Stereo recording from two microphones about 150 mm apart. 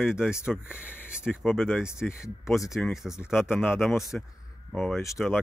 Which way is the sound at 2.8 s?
Centre (ahead or behind).